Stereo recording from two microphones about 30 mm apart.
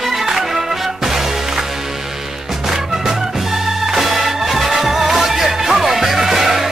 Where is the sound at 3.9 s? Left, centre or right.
Centre.